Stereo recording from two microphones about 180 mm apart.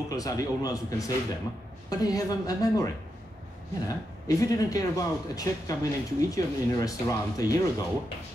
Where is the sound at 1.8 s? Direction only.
20° left (ahead or behind).